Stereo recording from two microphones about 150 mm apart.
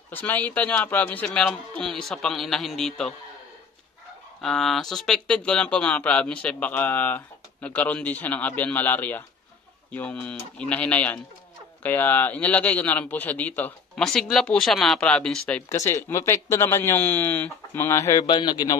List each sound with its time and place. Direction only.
0.1 s a man's voice: 10° left (ahead or behind)
4.4 s speech: 5° left (ahead or behind)
15.7 s speech: 20° left (ahead or behind)
18.2 s a man's voice: 30° left (ahead or behind)